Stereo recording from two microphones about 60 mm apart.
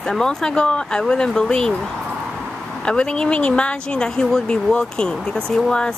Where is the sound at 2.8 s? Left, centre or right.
Centre.